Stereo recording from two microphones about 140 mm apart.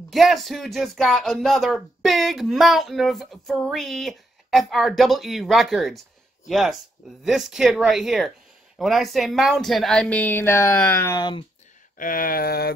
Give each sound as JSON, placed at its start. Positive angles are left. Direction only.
{"t": 0.1, "sound": "speech", "side_deg": 0}
{"t": 11.1, "sound": "speech", "side_deg": 35}
{"t": 12.0, "sound": "a sound", "side_deg": 80}